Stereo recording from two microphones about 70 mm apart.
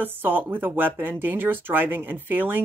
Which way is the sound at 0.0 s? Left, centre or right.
Right.